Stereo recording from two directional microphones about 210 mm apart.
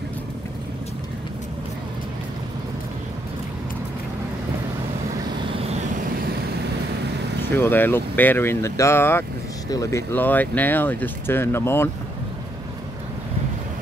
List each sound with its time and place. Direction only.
5.6 s vehicle: 30° right (ahead or behind)
7.4 s speech: 10° left (ahead or behind)